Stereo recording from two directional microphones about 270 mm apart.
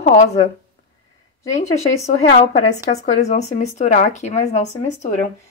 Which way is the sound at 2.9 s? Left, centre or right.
Left.